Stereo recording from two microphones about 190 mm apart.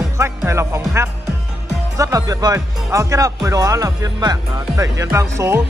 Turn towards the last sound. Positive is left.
turn(degrees=-15)  # may be behind; listen again after turning